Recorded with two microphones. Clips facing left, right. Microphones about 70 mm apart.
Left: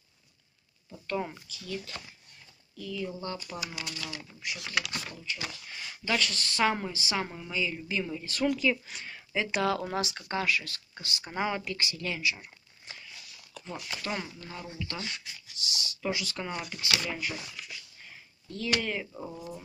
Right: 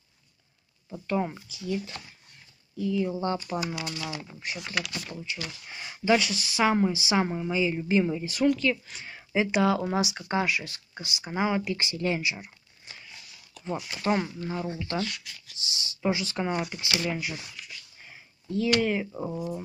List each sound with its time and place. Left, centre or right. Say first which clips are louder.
1.0 s speech: right 5 dB; centre
2.8 s speech: right 8 dB; right
5.1 s speech: right 2 dB; centre
8.5 s speech: right 3 dB; centre
9.0 s speech: right 7 dB; centre
11.7 s speech: right 6 dB; right
13.7 s speech: right 8 dB; right
15.0 s speech: right 7 dB; left
15.6 s speech: right 5 dB; right
17.1 s speech: right 2 dB; centre
18.0 s a sound: right 6 dB; centre
18.8 s speech: right 7 dB; centre